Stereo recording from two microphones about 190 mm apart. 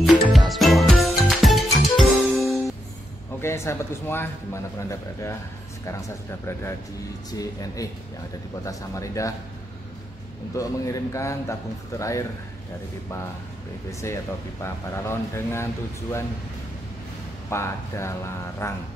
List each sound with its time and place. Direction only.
0.0 s music: centre (ahead or behind)
3.3 s a man's voice: 15° left (ahead or behind)
10.5 s speech: 15° left (ahead or behind)
14.6 s speech: 15° left (ahead or behind)
17.5 s speech: 15° left (ahead or behind)